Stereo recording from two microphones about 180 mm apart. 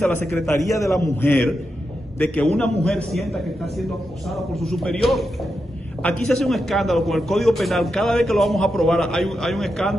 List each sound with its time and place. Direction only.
0.0 s a man's voice: 15° left (ahead or behind)